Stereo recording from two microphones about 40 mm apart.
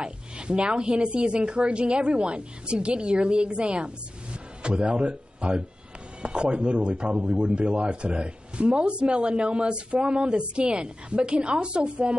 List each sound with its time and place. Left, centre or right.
0.0 s speech: right